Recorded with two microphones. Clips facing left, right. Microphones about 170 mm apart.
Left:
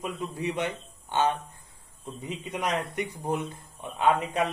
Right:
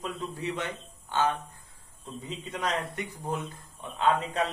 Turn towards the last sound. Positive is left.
turn(degrees=15)  # may be behind; listen again after turning